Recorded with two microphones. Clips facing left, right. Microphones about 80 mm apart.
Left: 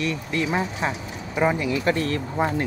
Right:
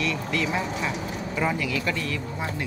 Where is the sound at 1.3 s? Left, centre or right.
Left.